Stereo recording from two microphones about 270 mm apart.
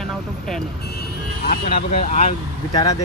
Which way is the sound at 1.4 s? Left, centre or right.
Left.